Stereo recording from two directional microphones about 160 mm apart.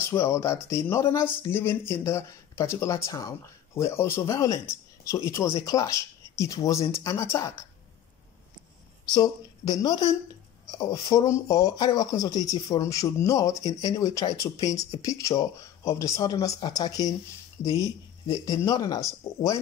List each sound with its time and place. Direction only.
0.0 s speech: 15° left (ahead or behind)
9.1 s speech: 25° left (ahead or behind)